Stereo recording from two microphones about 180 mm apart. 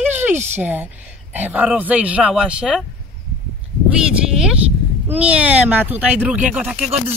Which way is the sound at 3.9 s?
5° right (ahead or behind).